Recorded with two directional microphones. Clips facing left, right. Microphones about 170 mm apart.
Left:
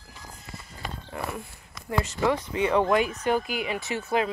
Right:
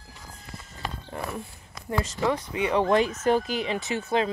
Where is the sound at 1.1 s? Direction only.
30° right (ahead or behind).